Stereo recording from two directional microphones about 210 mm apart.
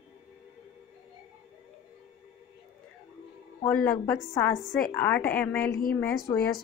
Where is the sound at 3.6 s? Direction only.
5° left (ahead or behind).